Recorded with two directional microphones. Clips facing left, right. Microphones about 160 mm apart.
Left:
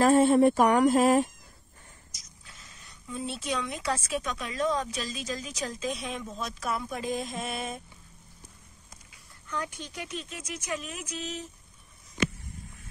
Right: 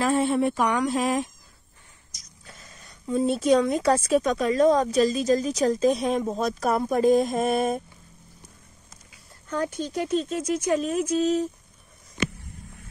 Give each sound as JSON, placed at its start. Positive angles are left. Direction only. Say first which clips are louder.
{"t": 0.0, "sound": "speech", "louder": "left 3 dB", "side_deg": 45}
{"t": 2.4, "sound": "speech", "louder": "right 6 dB", "side_deg": -45}
{"t": 9.5, "sound": "speech", "louder": "right 8 dB", "side_deg": -35}